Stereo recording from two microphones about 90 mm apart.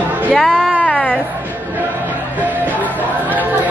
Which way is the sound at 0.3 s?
5° left (ahead or behind).